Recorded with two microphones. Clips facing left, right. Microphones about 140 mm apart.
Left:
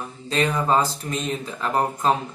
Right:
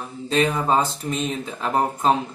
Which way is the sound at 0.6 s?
20° right (ahead or behind).